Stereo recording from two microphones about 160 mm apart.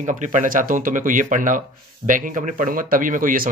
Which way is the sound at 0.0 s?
50° right (ahead or behind).